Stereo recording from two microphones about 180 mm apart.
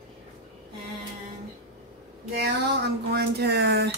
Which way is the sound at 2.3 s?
65° right (ahead or behind).